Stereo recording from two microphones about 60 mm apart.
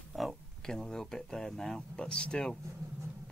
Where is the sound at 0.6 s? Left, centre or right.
Centre.